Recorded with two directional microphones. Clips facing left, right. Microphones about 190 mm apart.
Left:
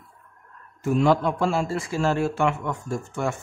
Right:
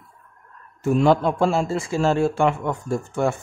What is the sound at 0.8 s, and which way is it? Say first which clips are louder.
A man's voice: right 3 dB; 30° right (ahead or behind).